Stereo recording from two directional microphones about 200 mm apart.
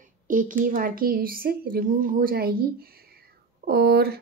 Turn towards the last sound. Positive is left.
turn(degrees=-50)  # may be behind; listen again after turning